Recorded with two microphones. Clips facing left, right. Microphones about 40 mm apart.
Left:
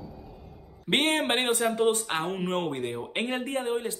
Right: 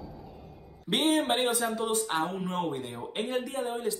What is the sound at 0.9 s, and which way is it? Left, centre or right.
Speech, left.